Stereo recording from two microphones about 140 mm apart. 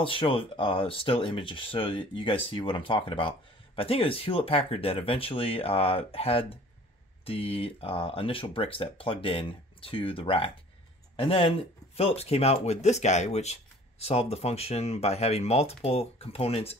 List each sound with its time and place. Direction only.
0.0 s speech: 40° left (ahead or behind)